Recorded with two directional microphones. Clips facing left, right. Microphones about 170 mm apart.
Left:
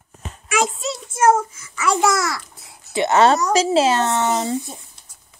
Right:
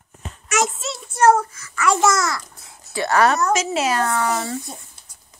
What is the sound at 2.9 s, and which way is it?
Speech, 20° left (ahead or behind).